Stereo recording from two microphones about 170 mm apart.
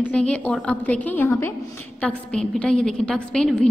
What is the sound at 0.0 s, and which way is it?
A woman's voice, 5° left (ahead or behind).